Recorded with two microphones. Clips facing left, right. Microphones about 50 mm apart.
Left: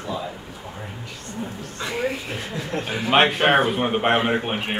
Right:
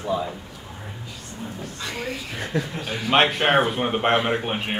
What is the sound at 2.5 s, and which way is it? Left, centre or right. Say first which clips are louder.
Speech: right 10 dB; right.